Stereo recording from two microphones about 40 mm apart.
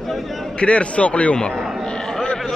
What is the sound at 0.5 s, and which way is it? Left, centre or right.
Speech, left.